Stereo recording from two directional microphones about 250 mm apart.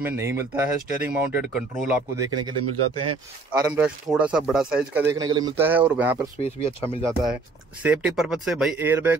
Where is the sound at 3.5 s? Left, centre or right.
Centre.